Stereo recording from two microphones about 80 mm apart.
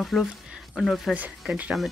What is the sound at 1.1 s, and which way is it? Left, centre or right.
Speech, centre.